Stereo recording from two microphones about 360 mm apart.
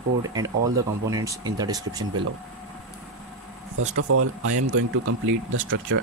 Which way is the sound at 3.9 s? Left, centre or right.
Right.